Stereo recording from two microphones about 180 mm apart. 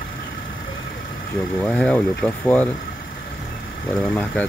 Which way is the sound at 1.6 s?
5° left (ahead or behind).